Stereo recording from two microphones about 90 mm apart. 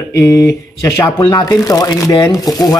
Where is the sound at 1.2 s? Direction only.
50° left (ahead or behind).